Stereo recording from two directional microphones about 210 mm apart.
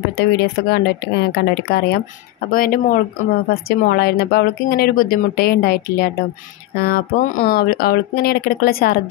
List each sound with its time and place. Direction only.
0.2 s speech: 50° left (ahead or behind)